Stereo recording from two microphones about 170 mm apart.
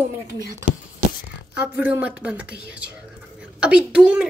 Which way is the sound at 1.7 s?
10° right (ahead or behind).